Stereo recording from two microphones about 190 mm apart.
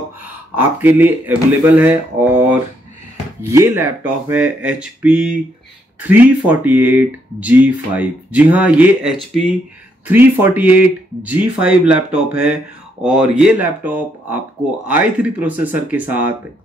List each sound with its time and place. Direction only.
0.6 s speech: 10° right (ahead or behind)
3.4 s speech: 15° right (ahead or behind)